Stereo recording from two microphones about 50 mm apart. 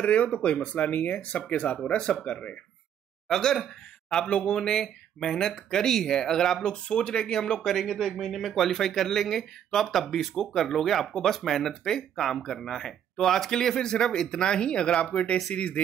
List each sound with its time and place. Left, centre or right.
0.0 s speech: left
3.3 s speech: centre
7.7 s speech: centre; by 15.8 s left